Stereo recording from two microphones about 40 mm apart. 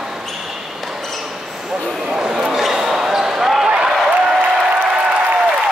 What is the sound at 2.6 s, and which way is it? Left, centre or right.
Basketball bounce, centre.